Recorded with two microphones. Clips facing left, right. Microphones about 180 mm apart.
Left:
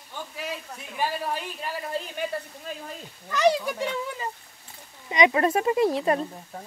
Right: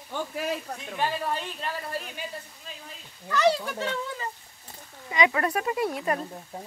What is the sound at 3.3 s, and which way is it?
Speech, 15° left (ahead or behind).